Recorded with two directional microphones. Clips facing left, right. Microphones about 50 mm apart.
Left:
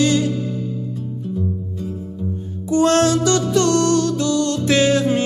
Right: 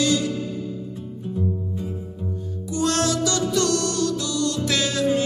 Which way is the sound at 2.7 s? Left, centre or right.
Left.